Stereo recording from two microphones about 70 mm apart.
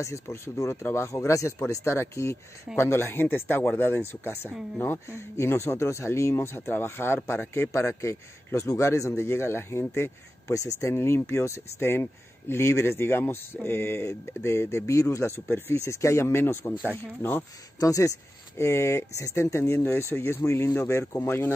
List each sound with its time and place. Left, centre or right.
0.0 s speech: left
5.1 s speech: left
17.7 s speech: left